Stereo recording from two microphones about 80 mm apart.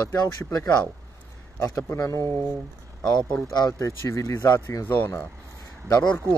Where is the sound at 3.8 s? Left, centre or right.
Left.